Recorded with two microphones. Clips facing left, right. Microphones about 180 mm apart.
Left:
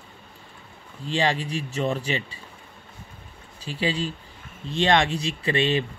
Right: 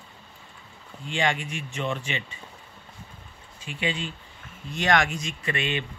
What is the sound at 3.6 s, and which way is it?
Speech, 35° left (ahead or behind).